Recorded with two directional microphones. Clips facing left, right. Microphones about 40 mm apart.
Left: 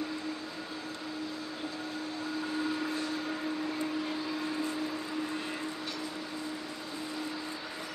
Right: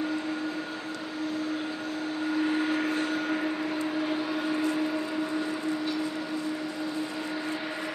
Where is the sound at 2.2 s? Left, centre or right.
Right.